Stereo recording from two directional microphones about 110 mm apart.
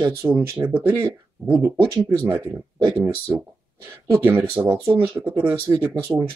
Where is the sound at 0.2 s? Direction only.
20° right (ahead or behind).